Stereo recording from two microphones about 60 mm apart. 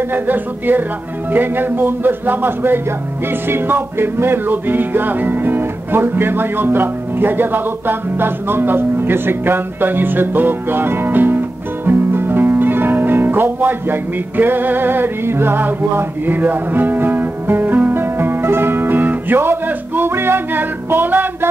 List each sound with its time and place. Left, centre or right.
0.1 s a man's voice: right
3.3 s music: right